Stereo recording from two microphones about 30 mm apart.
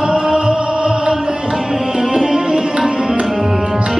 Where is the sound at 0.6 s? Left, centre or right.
Right.